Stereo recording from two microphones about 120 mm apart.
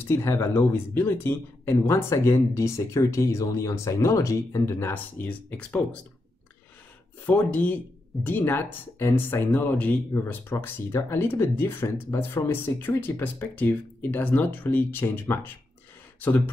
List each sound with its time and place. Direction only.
0.1 s speech: 25° left (ahead or behind)
7.2 s speech: 15° left (ahead or behind)